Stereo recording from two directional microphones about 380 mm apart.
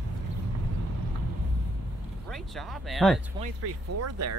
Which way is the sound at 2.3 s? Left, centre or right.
Centre.